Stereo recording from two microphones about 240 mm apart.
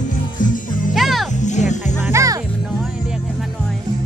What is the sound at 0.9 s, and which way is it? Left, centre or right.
Music, centre.